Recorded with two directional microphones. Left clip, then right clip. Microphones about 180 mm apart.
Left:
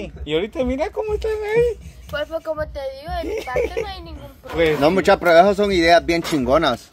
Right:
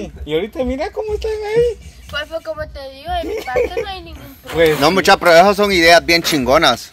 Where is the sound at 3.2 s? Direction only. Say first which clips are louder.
Right 3 dB; 45° right (ahead or behind).